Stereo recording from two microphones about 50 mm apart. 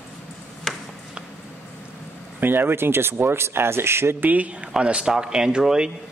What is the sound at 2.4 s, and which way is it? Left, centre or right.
Speech, right.